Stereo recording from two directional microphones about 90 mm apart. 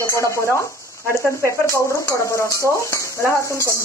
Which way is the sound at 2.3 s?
35° left (ahead or behind).